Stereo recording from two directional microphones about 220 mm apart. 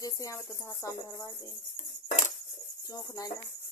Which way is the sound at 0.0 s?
15° left (ahead or behind).